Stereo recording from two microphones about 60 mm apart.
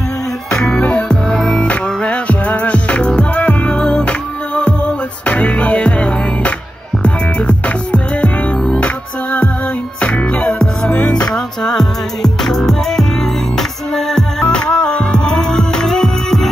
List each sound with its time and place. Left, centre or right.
0.5 s music: centre
1.0 s music: centre
1.7 s music: left
5.2 s music: left